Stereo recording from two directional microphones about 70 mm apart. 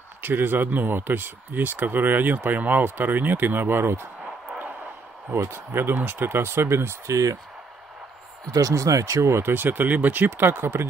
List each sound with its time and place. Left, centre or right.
0.2 s speech: right
4.2 s a sound: centre
5.3 s speech: right
8.5 s speech: right